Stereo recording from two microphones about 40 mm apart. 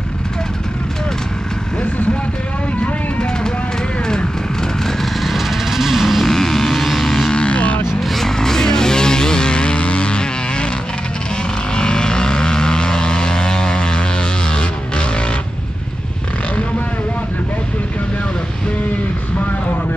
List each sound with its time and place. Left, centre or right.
5.2 s music: centre
6.2 s vehicle: centre
7.3 s vehicle: left
8.0 s music: centre
8.4 s vehicle: centre
11.7 s vehicle: centre
14.5 s music: left